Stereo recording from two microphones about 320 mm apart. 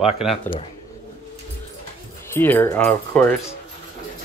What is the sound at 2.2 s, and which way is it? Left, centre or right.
Speech, centre.